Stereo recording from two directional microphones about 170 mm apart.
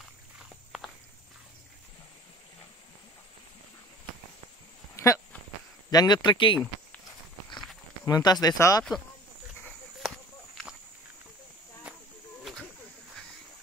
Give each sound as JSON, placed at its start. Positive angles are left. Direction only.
{"t": 0.7, "sound": "walk", "side_deg": 0}
{"t": 4.9, "sound": "a sound", "side_deg": 20}
{"t": 5.9, "sound": "speech", "side_deg": 25}
{"t": 8.0, "sound": "speech", "side_deg": 25}